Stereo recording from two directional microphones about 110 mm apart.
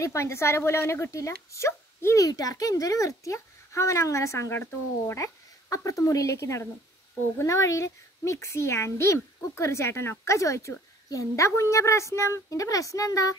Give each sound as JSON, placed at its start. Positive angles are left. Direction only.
{"t": 0.0, "sound": "speech", "side_deg": 25}